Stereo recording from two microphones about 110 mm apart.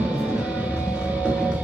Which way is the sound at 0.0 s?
10° right (ahead or behind).